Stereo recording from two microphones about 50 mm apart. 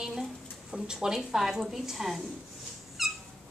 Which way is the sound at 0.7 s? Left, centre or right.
Centre.